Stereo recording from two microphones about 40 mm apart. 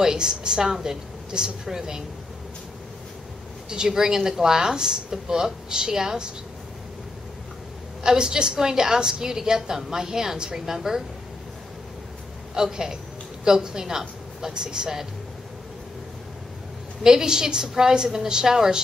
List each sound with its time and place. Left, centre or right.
0.0 s a woman's voice: centre
3.7 s a woman's voice: centre
8.0 s a woman's voice: centre
12.5 s a woman's voice: centre
17.0 s a woman's voice: centre